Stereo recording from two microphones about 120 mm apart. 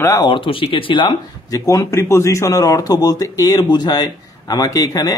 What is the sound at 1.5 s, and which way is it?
Speech, 30° left (ahead or behind).